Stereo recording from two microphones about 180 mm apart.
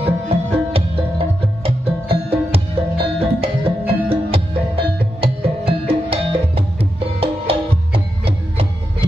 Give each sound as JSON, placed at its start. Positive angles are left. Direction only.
{"t": 0.0, "sound": "music", "side_deg": -30}